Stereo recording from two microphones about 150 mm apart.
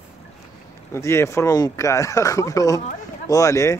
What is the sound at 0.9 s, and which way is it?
Speech, 20° left (ahead or behind).